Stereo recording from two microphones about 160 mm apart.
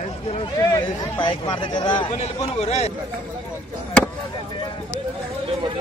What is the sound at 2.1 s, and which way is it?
Speech, 45° left (ahead or behind).